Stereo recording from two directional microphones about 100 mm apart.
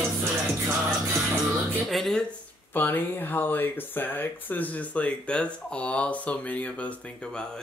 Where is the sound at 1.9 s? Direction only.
Centre (ahead or behind).